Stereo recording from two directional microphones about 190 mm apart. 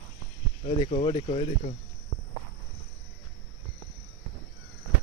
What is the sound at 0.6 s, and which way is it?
Speech, 35° left (ahead or behind).